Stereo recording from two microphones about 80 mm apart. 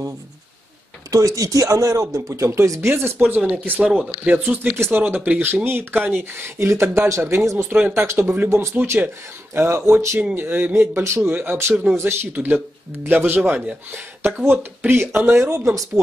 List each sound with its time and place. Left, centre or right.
1.1 s speech: right
2.9 s speech: right
6.4 s speech: right